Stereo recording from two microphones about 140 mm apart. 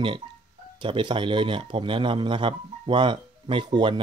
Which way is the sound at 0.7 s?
35° right (ahead or behind).